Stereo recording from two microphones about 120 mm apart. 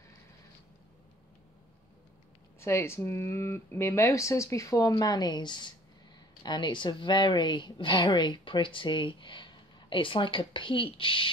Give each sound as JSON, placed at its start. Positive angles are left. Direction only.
{"t": 2.6, "sound": "a woman's voice", "side_deg": 20}